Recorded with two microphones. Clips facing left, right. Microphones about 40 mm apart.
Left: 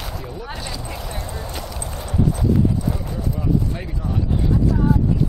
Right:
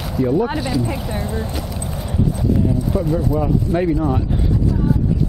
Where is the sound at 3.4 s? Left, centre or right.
Centre.